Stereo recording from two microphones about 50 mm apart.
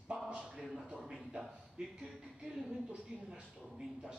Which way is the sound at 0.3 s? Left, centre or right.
Centre.